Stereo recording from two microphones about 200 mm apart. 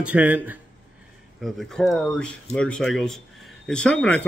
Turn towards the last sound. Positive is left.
turn(degrees=5)  # may be behind; listen again after turning